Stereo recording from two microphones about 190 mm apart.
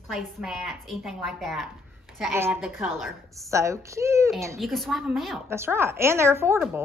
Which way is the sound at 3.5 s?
15° right (ahead or behind).